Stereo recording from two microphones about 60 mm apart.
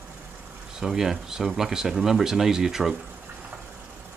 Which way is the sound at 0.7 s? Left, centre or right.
Centre.